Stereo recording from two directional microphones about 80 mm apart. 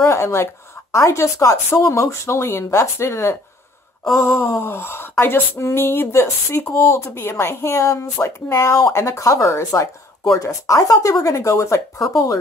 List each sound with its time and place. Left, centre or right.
0.0 s speech: left
4.4 s speech: left